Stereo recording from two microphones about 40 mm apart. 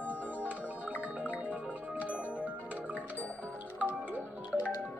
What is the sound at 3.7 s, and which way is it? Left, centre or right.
Music, right.